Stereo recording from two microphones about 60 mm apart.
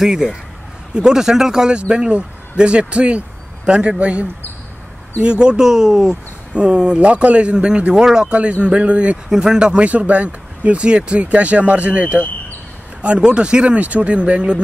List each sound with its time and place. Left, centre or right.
0.0 s a man's voice: centre
6.5 s a man's voice: centre
9.3 s speech: centre